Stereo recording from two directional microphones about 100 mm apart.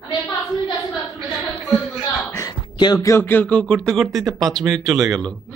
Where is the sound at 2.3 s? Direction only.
40° left (ahead or behind).